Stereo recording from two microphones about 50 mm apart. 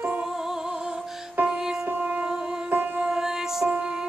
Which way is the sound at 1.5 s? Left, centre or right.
Centre.